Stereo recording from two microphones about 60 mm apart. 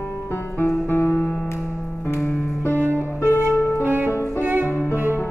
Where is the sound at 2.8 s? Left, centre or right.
Right.